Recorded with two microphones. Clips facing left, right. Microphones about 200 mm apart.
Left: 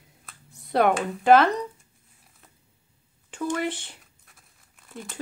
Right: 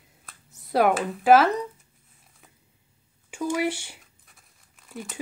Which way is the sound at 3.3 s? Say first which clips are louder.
Right 2 dB; 10° right (ahead or behind).